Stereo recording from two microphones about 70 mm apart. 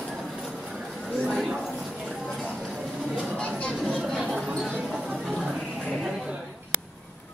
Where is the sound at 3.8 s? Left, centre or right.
Centre.